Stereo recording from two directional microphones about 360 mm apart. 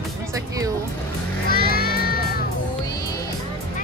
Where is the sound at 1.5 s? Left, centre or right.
Left.